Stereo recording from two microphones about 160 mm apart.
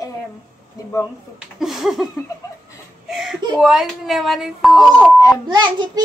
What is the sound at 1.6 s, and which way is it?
Speech, centre (ahead or behind).